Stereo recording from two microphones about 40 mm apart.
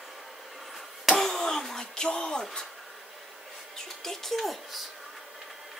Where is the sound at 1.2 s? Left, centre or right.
Centre.